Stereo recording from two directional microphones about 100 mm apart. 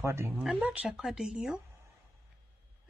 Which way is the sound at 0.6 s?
15° right (ahead or behind).